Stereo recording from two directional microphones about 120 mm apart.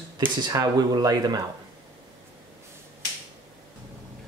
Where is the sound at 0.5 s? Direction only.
35° right (ahead or behind).